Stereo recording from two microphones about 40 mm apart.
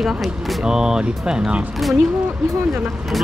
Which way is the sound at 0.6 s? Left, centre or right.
Centre.